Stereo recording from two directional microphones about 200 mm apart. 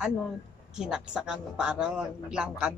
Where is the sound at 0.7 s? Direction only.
5° right (ahead or behind).